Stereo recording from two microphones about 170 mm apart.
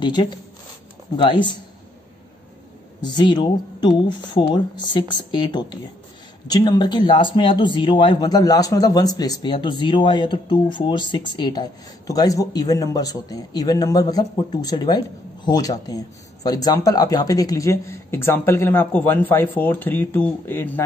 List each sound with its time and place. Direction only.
0.0 s speech: 25° left (ahead or behind)
3.0 s speech: 25° left (ahead or behind)